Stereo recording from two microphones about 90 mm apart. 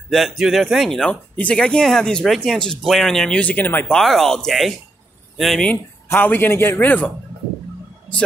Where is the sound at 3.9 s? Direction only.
5° left (ahead or behind).